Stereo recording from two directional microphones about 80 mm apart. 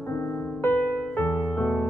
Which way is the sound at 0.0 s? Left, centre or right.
Left.